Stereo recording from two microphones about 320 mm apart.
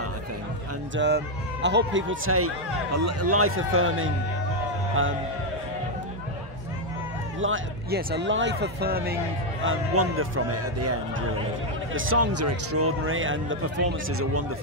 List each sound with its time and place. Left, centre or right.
0.9 s speech: right
7.3 s speech: right
9.7 s a man's voice: right